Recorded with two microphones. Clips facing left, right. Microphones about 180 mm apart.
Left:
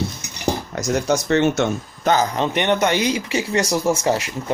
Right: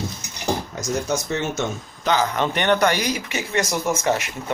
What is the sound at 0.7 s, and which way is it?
Speech, 70° left (ahead or behind).